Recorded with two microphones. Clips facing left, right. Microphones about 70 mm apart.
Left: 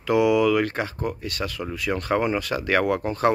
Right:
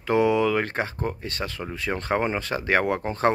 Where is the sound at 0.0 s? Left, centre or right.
Right.